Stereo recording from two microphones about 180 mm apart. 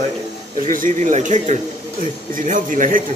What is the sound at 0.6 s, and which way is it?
Speech, 50° right (ahead or behind).